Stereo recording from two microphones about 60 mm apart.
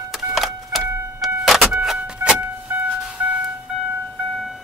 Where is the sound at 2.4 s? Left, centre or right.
Right.